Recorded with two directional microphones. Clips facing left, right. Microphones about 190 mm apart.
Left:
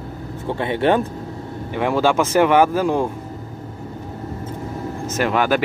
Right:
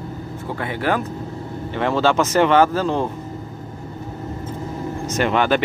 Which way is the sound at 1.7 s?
10° left (ahead or behind).